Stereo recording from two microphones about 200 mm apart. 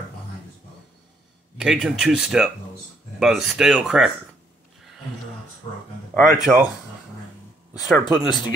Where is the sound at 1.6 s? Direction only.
5° right (ahead or behind).